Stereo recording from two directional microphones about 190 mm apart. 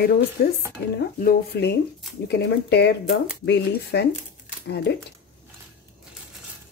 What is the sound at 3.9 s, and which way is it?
Speech, 55° left (ahead or behind).